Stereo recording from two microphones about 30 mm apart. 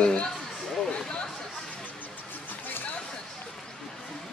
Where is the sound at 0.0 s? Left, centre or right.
Left.